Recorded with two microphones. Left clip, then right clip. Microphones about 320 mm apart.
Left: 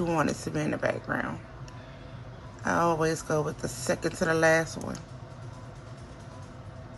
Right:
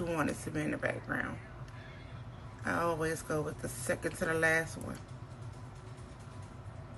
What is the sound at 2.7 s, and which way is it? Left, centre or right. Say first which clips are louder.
A woman's voice: left 7 dB; centre.